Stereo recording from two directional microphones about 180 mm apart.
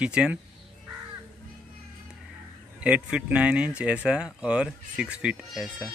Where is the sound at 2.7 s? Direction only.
5° right (ahead or behind).